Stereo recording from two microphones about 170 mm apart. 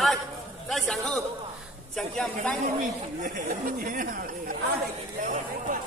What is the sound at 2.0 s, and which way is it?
Speech, 5° left (ahead or behind).